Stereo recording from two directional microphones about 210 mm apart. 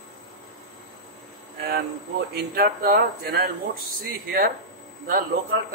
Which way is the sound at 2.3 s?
50° right (ahead or behind).